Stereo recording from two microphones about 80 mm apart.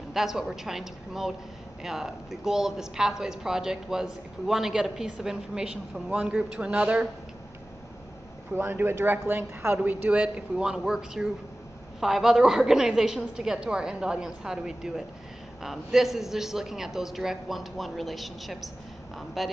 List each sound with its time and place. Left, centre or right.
0.1 s a man's voice: centre
8.5 s a woman's voice: right; by 19.5 s centre